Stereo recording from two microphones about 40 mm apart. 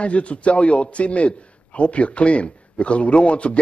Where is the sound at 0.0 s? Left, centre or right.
Left.